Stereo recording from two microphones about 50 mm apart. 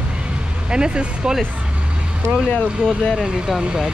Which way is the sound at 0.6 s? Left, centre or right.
Centre.